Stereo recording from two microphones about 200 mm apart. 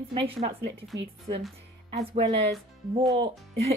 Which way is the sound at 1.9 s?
25° right (ahead or behind).